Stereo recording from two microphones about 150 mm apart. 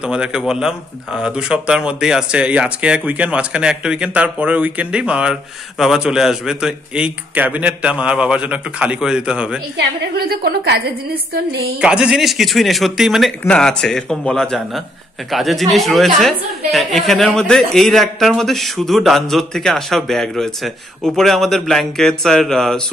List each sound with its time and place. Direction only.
0.0 s speech: 5° right (ahead or behind)
10.1 s a woman's voice: 90° right
11.8 s a woman's voice: 5° right (ahead or behind)